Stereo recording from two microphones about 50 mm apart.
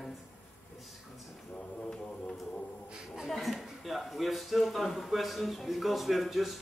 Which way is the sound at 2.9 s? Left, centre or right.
Centre.